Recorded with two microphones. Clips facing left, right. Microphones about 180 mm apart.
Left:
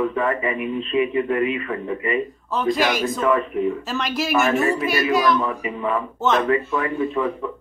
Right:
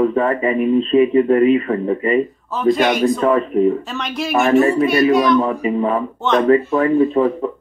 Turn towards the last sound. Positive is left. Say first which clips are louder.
# right 8 dB
turn(degrees=-35)  # may be behind; listen again after turning